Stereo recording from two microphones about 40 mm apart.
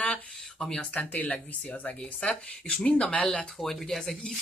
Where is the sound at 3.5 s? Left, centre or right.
Centre.